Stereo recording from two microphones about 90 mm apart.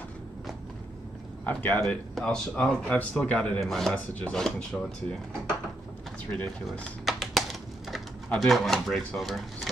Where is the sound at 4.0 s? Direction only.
15° left (ahead or behind).